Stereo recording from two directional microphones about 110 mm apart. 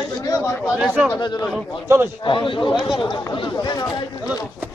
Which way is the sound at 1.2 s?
40° left (ahead or behind).